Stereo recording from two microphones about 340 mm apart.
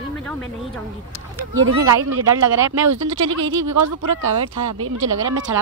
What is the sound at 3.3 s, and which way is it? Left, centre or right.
Speech, right.